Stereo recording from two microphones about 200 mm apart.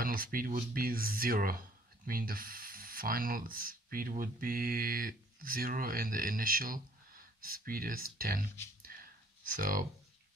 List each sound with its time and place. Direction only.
0.0 s speech: 45° right (ahead or behind)
8.8 s clicking: 45° right (ahead or behind)